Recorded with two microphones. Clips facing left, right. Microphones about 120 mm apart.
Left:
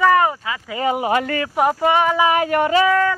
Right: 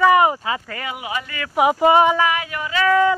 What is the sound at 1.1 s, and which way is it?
Speech, 55° left (ahead or behind).